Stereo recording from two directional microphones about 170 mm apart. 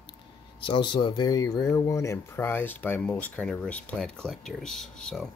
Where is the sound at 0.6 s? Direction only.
30° left (ahead or behind).